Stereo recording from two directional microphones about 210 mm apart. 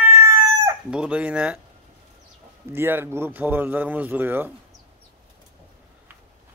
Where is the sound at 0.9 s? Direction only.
5° right (ahead or behind).